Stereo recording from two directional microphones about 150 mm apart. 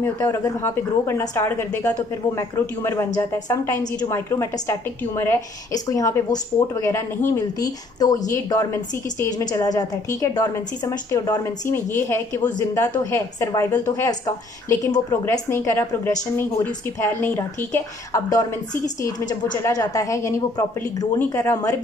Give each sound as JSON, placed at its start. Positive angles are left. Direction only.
{"t": 0.0, "sound": "a woman's voice", "side_deg": 20}
{"t": 19.5, "sound": "a woman's voice", "side_deg": 25}
{"t": 21.2, "sound": "a woman's voice", "side_deg": 10}